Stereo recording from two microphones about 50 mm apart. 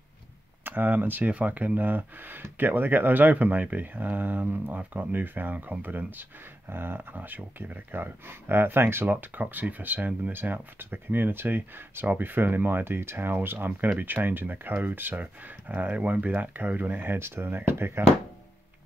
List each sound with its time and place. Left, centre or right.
0.7 s speech: right
17.0 s speech: right